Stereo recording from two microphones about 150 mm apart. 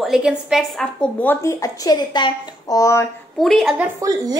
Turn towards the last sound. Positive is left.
turn(degrees=-15)  # may be behind; listen again after turning